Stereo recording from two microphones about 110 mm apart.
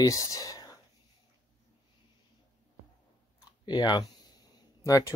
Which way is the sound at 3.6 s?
40° left (ahead or behind).